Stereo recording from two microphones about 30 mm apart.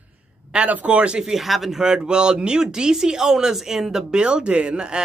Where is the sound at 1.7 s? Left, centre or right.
Right.